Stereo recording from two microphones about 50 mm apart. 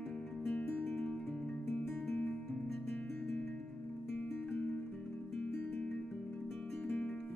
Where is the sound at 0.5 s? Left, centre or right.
Left.